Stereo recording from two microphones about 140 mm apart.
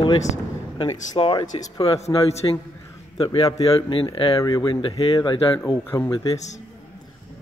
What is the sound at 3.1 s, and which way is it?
Speech, 30° left (ahead or behind).